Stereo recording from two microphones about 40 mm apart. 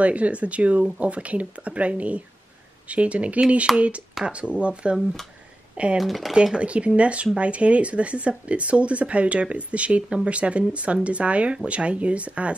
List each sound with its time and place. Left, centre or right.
0.0 s speech: right
5.9 s speech: centre
6.3 s speech: right
10.0 s speech: centre
10.3 s speech: right